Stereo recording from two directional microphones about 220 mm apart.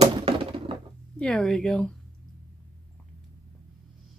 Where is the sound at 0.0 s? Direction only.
25° right (ahead or behind).